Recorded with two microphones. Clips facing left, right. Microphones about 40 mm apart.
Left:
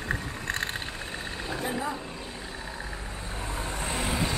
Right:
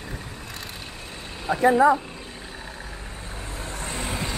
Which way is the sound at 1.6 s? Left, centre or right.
Right.